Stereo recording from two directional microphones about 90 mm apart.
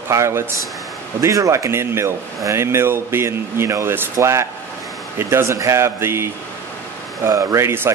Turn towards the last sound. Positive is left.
turn(degrees=-30)  # may be behind; listen again after turning